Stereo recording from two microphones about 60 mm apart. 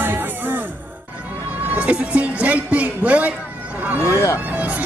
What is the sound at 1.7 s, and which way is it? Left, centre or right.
Speech, right.